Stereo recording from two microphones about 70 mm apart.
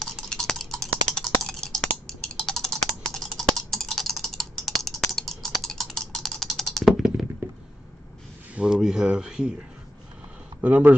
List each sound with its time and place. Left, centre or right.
0.3 s typing: centre
7.0 s computer keyboard: centre
8.5 s speech: centre
10.6 s speech: right